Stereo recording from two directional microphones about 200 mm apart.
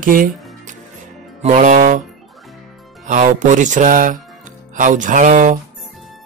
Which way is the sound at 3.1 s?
40° right (ahead or behind).